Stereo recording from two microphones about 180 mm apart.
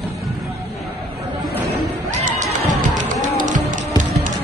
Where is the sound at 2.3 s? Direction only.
45° right (ahead or behind).